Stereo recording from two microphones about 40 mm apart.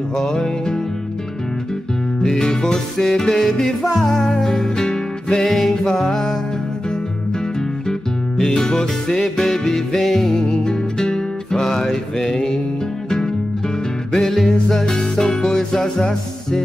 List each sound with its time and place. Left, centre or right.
0.1 s music: centre
2.2 s music: centre
3.6 s music: centre
8.4 s music: centre
10.3 s music: centre
14.1 s music: centre